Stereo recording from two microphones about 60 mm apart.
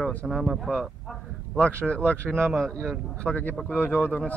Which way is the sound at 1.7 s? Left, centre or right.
Left.